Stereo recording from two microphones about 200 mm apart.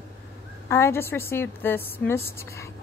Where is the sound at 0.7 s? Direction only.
15° left (ahead or behind).